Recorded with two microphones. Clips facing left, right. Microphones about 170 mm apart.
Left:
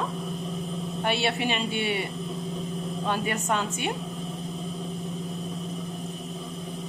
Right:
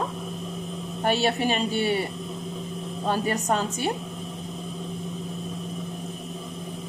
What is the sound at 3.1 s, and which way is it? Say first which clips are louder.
Speech: right 3 dB; 40° right (ahead or behind).